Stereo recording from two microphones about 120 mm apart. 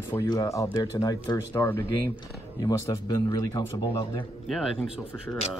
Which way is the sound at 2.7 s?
30° left (ahead or behind).